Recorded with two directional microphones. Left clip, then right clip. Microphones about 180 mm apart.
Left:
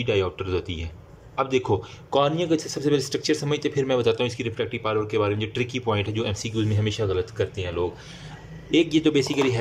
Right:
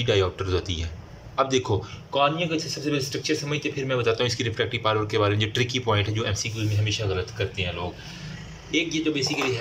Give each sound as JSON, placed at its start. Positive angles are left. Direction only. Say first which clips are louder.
{"t": 0.0, "sound": "speech", "louder": "right 1 dB", "side_deg": 10}
{"t": 2.0, "sound": "speech", "louder": "left 1 dB", "side_deg": 35}
{"t": 4.1, "sound": "speech", "louder": "even", "side_deg": 15}
{"t": 8.7, "sound": "speech", "louder": "left 5 dB", "side_deg": 40}